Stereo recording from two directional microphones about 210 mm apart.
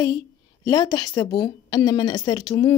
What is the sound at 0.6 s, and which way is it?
A woman's voice, 15° left (ahead or behind).